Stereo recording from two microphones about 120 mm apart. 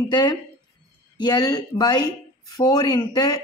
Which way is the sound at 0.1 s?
40° left (ahead or behind).